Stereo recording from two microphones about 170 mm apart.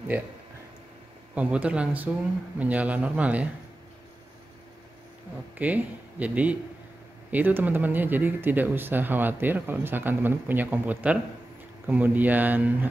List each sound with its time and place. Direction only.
1.3 s speech: 10° right (ahead or behind)
5.6 s speech: 10° right (ahead or behind)